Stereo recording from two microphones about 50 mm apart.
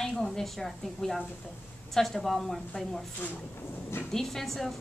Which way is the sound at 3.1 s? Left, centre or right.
Left.